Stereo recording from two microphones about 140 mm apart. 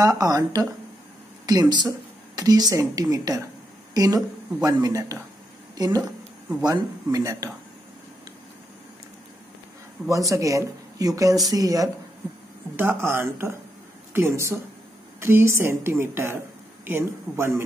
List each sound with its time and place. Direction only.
0.0 s a woman's voice: 25° right (ahead or behind)
10.0 s a woman's voice: 25° right (ahead or behind)